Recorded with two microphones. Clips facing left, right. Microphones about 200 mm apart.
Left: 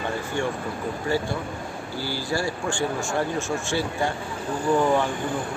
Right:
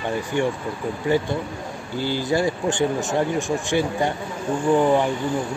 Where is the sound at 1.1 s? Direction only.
20° right (ahead or behind).